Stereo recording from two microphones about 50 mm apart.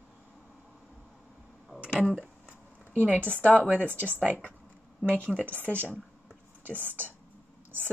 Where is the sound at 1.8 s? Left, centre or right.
Centre.